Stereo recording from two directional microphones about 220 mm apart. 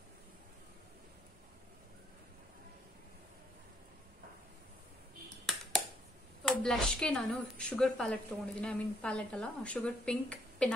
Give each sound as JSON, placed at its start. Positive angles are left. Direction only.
{"t": 6.4, "sound": "a woman's voice", "side_deg": 5}